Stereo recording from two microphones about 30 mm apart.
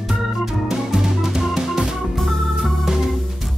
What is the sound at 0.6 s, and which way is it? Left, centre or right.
Music, centre.